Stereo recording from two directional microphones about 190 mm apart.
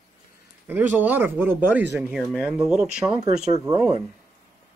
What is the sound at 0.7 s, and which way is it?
Speech, 10° right (ahead or behind).